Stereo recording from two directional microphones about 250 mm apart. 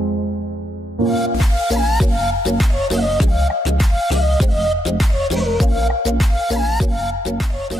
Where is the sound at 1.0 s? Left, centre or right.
Centre.